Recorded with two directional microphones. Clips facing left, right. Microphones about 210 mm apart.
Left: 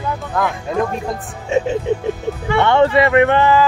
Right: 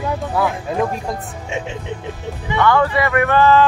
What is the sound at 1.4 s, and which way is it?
Speech, 35° left (ahead or behind).